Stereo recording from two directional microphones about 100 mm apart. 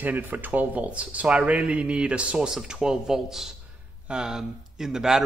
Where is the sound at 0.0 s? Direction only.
15° right (ahead or behind).